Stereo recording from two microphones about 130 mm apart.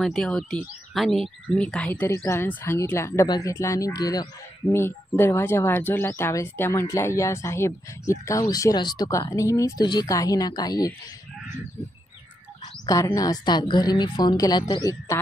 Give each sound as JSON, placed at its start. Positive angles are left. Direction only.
{"t": 0.0, "sound": "speech", "side_deg": 0}
{"t": 4.6, "sound": "speech", "side_deg": 15}
{"t": 12.8, "sound": "a woman's voice", "side_deg": 25}